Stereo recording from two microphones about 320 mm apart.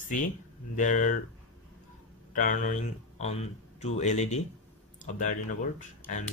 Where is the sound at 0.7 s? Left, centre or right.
Left.